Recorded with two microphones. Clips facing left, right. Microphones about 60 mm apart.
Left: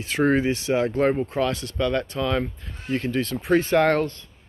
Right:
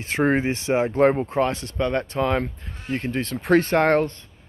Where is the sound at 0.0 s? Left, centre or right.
Right.